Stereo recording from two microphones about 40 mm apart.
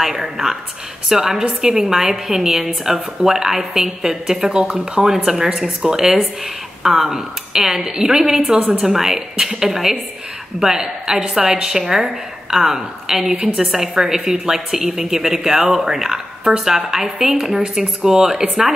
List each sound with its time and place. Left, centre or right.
0.0 s a woman's voice: centre
5.0 s a woman's voice: centre
13.3 s a woman's voice: right
13.6 s a woman's voice: centre